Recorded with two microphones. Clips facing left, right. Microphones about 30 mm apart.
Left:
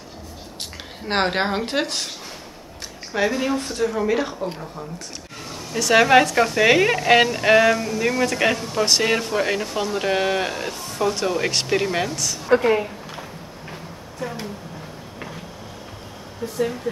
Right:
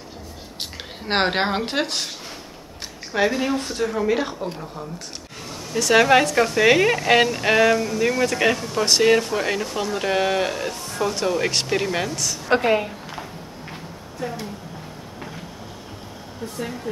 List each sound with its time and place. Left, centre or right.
0.6 s a sound: centre
1.6 s speech: centre
3.1 s speech: centre
5.7 s speech: centre
12.4 s a woman's voice: right